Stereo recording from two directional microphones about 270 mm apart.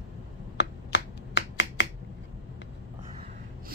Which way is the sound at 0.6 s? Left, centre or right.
Left.